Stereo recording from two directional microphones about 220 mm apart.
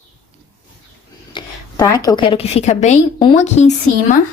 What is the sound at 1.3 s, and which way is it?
A woman's voice, 15° left (ahead or behind).